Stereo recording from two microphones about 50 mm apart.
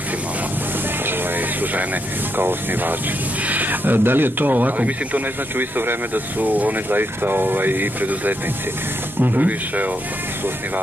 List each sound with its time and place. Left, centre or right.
2.3 s speech: right